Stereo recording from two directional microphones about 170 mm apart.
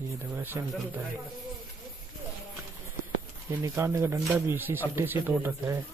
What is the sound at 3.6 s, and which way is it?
Speech, 15° right (ahead or behind).